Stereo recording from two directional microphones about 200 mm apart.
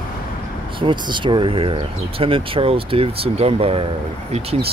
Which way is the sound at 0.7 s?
25° right (ahead or behind).